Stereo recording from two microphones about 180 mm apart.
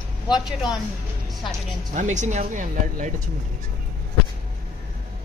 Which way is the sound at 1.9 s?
40° right (ahead or behind).